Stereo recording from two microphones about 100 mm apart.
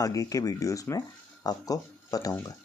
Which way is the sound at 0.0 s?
35° left (ahead or behind).